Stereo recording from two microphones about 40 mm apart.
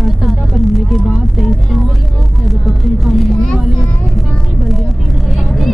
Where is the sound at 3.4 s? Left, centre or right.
Centre.